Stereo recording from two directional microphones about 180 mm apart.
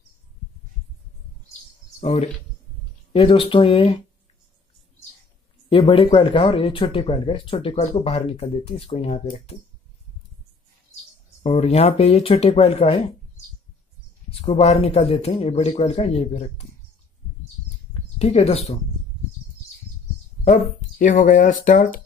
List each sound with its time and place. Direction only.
2.0 s speech: 35° left (ahead or behind)
5.7 s speech: 30° left (ahead or behind)
11.4 s speech: 35° left (ahead or behind)
14.3 s speech: 35° left (ahead or behind)
17.9 s speech: 35° left (ahead or behind)
21.0 s speech: 50° left (ahead or behind)